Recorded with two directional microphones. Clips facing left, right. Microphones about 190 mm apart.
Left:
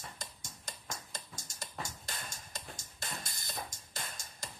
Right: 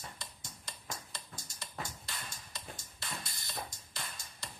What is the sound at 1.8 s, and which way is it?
Music, 45° left (ahead or behind).